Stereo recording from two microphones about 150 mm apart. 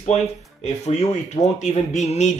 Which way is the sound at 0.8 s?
50° left (ahead or behind).